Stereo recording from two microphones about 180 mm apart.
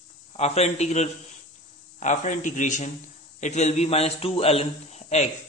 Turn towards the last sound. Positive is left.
turn(degrees=40)  # may be behind; listen again after turning